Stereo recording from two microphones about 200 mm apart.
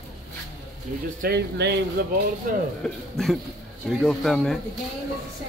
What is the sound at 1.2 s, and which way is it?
Speech, 55° right (ahead or behind).